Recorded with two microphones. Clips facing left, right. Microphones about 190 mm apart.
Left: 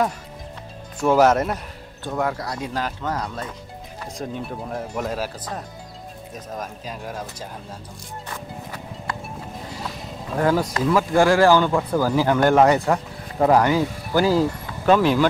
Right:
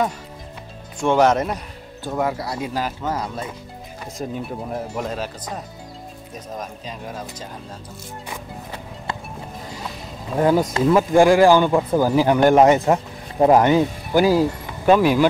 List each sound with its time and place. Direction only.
1.0 s speech: 5° left (ahead or behind)
2.0 s speech: 5° right (ahead or behind)
5.1 s speech: 5° left (ahead or behind)
6.6 s speech: 5° left (ahead or behind)
10.3 s speech: 20° right (ahead or behind)